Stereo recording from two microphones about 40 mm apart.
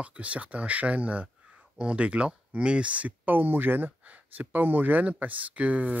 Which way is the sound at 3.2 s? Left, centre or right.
Right.